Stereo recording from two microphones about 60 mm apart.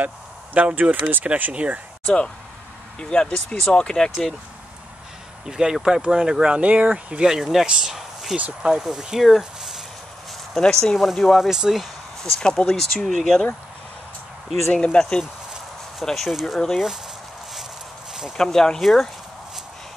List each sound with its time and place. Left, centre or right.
0.6 s speech: right
3.0 s speech: centre
5.4 s speech: centre
7.2 s speech: centre
10.6 s speech: centre
11.0 s speech: centre
12.2 s speech: centre
14.7 s speech: centre
16.0 s speech: centre
18.4 s speech: centre